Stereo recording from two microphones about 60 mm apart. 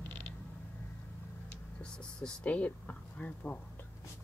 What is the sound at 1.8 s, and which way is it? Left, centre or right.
Speech, centre.